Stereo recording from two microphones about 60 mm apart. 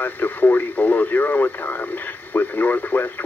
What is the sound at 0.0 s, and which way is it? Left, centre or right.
Speech, left.